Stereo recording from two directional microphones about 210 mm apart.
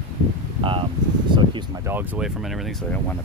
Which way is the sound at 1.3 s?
20° right (ahead or behind).